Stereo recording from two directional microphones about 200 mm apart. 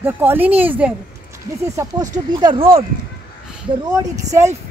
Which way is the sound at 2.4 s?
25° right (ahead or behind).